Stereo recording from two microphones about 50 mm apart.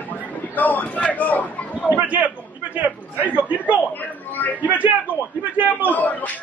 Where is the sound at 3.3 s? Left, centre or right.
Right.